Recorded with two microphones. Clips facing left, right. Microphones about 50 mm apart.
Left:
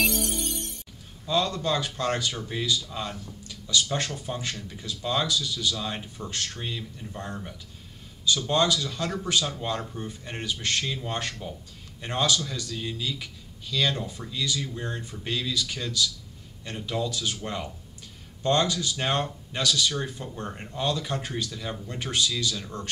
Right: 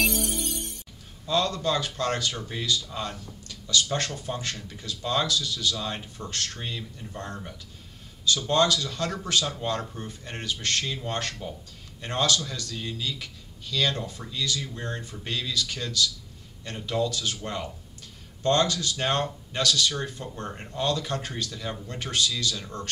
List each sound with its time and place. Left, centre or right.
0.0 s music: centre
1.2 s speech: centre
2.3 s speech: centre
4.6 s speech: centre
8.5 s speech: centre
10.9 s speech: centre
12.0 s speech: centre